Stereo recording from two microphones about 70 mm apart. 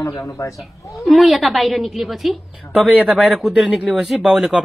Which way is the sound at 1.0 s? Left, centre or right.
Centre.